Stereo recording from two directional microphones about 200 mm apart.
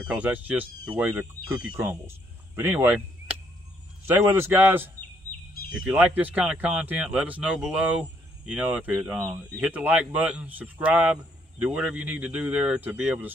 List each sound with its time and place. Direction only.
0.0 s a man's voice: 5° right (ahead or behind)